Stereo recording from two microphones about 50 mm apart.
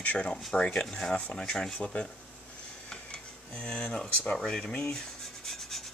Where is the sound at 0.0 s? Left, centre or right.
Left.